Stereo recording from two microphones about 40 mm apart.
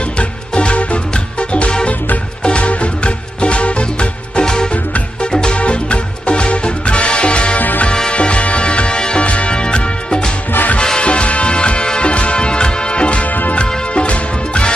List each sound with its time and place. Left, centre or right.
0.2 s music: left